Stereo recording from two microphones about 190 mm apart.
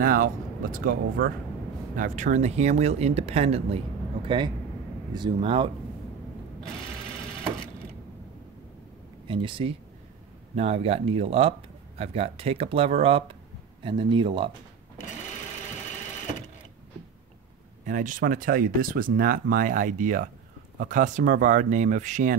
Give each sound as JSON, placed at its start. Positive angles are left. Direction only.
{"t": 0.0, "sound": "speech", "side_deg": -50}
{"t": 5.1, "sound": "speech", "side_deg": -25}
{"t": 9.3, "sound": "speech", "side_deg": -25}
{"t": 17.8, "sound": "speech", "side_deg": -45}